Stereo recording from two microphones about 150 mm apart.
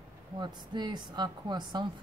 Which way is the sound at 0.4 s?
30° right (ahead or behind).